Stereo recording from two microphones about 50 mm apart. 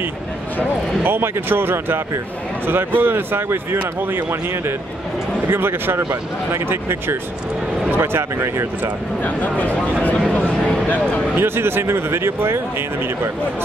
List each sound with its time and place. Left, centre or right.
1.0 s speech: right
9.2 s speech: left
11.3 s speech: right